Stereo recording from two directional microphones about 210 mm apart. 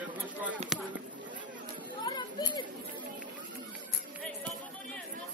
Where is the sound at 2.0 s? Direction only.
20° left (ahead or behind).